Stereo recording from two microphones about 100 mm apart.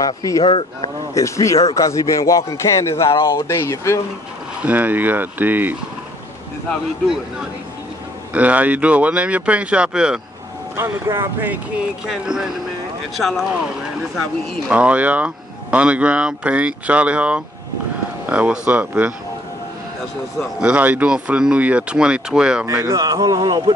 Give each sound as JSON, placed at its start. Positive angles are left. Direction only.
{"t": 0.0, "sound": "speech", "side_deg": 35}
{"t": 0.4, "sound": "speech", "side_deg": 65}
{"t": 1.1, "sound": "a man's voice", "side_deg": 30}
{"t": 4.6, "sound": "speech", "side_deg": -15}
{"t": 8.3, "sound": "speech", "side_deg": -15}
{"t": 10.8, "sound": "speech", "side_deg": -25}
{"t": 12.1, "sound": "speech", "side_deg": -5}
{"t": 14.7, "sound": "speech", "side_deg": -15}
{"t": 20.6, "sound": "speech", "side_deg": -15}
{"t": 22.7, "sound": "speech", "side_deg": -25}
{"t": 23.0, "sound": "speech", "side_deg": -40}